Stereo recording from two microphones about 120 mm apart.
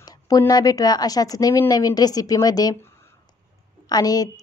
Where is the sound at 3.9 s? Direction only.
30° left (ahead or behind).